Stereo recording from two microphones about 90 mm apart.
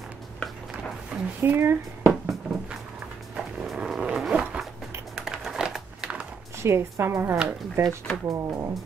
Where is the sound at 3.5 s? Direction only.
5° right (ahead or behind).